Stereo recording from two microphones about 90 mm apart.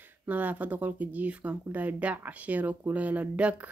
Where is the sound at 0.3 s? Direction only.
20° right (ahead or behind).